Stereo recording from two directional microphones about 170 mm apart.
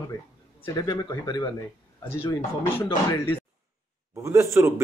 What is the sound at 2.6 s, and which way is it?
Speech, 15° left (ahead or behind).